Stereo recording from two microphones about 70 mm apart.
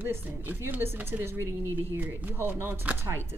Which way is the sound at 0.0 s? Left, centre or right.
Right.